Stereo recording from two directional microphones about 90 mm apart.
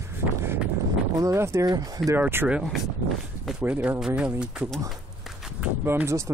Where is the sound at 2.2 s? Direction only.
25° right (ahead or behind).